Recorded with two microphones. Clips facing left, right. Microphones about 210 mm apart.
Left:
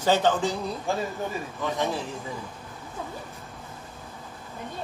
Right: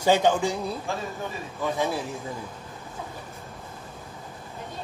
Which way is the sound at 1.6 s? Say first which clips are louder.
Right 2 dB; 10° right (ahead or behind).